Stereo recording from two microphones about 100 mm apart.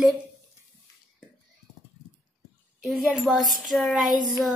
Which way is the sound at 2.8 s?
Centre (ahead or behind).